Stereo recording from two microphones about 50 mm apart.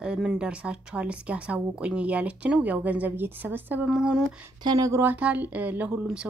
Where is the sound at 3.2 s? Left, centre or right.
Right.